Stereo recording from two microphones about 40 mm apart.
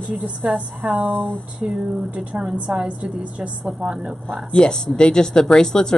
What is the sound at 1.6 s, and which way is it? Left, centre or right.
A woman's voice, right.